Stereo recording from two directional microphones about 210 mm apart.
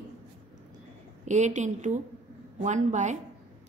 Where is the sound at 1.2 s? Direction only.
35° right (ahead or behind).